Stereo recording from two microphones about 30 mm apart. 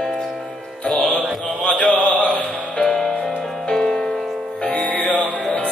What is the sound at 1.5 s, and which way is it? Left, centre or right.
Chant, left.